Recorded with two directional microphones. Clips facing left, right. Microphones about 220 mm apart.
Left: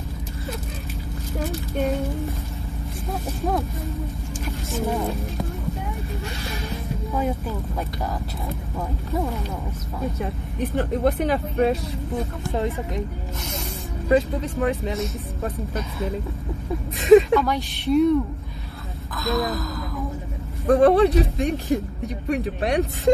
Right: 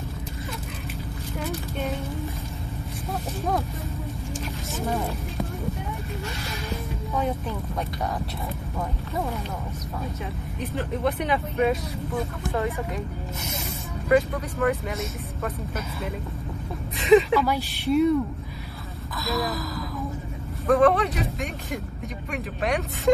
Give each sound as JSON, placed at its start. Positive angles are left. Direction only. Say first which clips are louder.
{"t": 7.2, "sound": "music", "louder": "left 2 dB", "side_deg": 0}
{"t": 9.1, "sound": "speech", "louder": "left 4 dB", "side_deg": 0}
{"t": 10.8, "sound": "speech", "louder": "left 5 dB", "side_deg": 45}
{"t": 14.0, "sound": "speech", "louder": "left 1 dB", "side_deg": 25}
{"t": 17.3, "sound": "speech", "louder": "left 2 dB", "side_deg": -5}
{"t": 19.1, "sound": "speech", "louder": "left 4 dB", "side_deg": 0}
{"t": 20.6, "sound": "speech", "louder": "left 4 dB", "side_deg": 30}